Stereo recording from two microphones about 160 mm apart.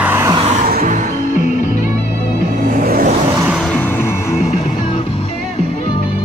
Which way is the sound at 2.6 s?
65° right (ahead or behind).